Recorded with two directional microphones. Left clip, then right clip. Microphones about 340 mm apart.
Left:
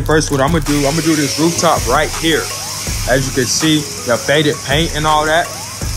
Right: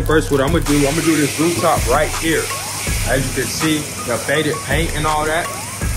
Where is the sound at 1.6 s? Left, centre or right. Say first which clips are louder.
Left 2 dB; left.